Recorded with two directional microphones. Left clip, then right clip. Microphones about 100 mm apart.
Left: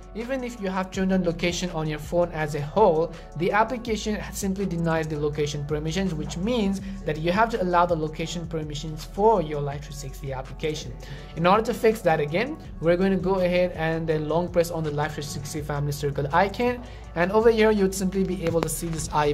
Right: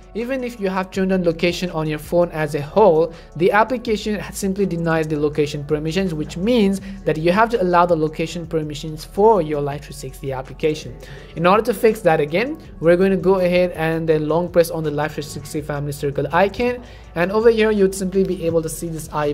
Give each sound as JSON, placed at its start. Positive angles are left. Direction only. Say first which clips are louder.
{"t": 0.1, "sound": "speech", "louder": "right 6 dB", "side_deg": -30}
{"t": 6.5, "sound": "speech", "louder": "right 9 dB", "side_deg": -45}
{"t": 11.3, "sound": "speech", "louder": "right 5 dB", "side_deg": -25}
{"t": 17.3, "sound": "speech", "louder": "right 4 dB", "side_deg": -10}
{"t": 18.9, "sound": "speech", "louder": "right 1 dB", "side_deg": -25}